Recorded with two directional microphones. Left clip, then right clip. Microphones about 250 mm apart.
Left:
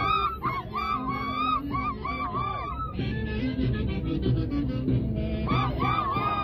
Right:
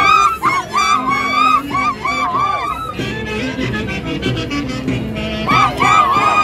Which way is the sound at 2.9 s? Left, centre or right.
Right.